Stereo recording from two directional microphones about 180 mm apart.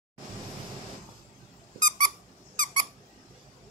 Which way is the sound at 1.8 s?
45° right (ahead or behind).